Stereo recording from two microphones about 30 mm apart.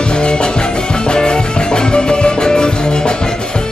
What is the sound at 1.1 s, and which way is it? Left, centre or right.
Music, left.